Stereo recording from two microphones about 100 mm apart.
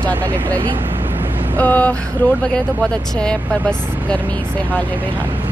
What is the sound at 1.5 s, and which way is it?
Speech, 15° left (ahead or behind).